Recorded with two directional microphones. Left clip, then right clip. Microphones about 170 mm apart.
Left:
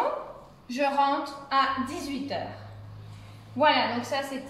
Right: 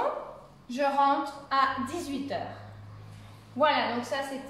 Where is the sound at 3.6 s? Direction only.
20° right (ahead or behind).